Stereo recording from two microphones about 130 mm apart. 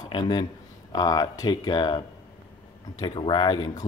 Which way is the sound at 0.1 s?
35° left (ahead or behind).